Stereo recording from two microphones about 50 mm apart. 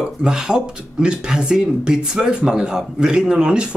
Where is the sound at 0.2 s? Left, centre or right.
Centre.